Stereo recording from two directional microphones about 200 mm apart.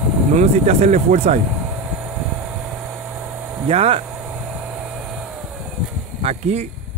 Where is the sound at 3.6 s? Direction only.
30° right (ahead or behind).